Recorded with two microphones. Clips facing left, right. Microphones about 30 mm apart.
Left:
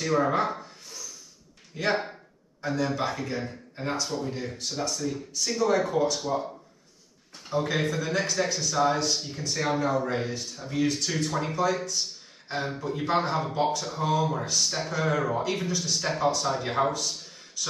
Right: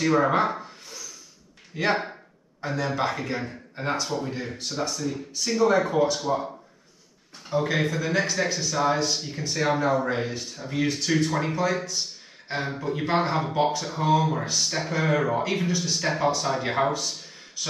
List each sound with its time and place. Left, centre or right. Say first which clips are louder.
0.0 s speech: right 3 dB; right
0.4 s a sound: right 3 dB; centre
1.8 s a man's voice: right 2 dB; centre
7.4 s a man's voice: right 2 dB; centre; by 17.0 s right